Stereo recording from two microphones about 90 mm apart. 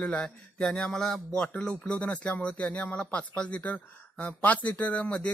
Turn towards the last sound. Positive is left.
turn(degrees=15)  # may be behind; listen again after turning